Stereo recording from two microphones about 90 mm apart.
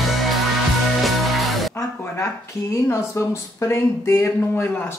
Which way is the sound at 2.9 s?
30° left (ahead or behind).